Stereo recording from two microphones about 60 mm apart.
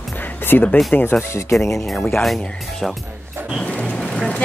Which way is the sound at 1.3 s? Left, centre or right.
Left.